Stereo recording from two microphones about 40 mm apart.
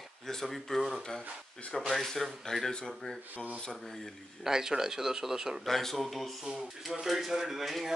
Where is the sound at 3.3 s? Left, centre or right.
Right.